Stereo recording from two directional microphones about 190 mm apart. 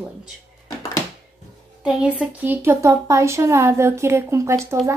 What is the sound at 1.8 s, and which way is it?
Speech, 5° right (ahead or behind).